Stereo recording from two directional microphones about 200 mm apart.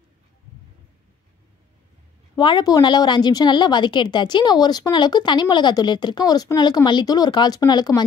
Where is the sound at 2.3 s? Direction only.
20° left (ahead or behind).